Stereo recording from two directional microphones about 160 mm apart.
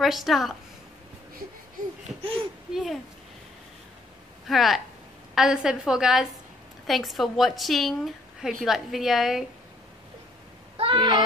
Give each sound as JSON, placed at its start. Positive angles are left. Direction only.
{"t": 0.0, "sound": "a woman's voice", "side_deg": 0}
{"t": 2.7, "sound": "speech", "side_deg": 0}
{"t": 4.5, "sound": "a woman's voice", "side_deg": 0}
{"t": 10.8, "sound": "speech", "side_deg": -30}